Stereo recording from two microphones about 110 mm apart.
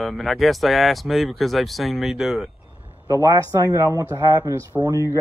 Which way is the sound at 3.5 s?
30° right (ahead or behind).